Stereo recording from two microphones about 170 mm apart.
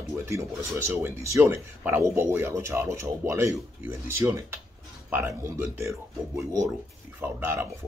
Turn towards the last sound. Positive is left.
turn(degrees=-15)  # may be behind; listen again after turning